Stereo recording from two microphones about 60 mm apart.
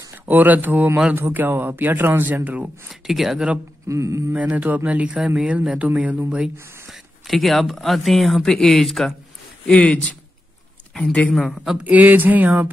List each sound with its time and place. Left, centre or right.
0.3 s speech: right
2.9 s speech: centre
3.8 s mantra: right
4.3 s speech: right
6.9 s speech: centre
9.7 s speech: centre
11.5 s speech: centre
11.8 s speech: right